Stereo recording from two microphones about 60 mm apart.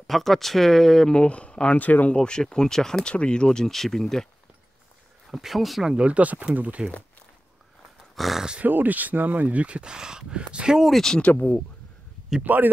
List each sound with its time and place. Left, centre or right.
0.0 s speech: centre; by 2.1 s left
2.1 s speech: centre
5.3 s speech: centre
5.9 s speech: right
8.2 s speech: centre
8.6 s speech: right; by 10.9 s centre
10.9 s speech: centre
11.1 s speech: left
12.5 s speech: right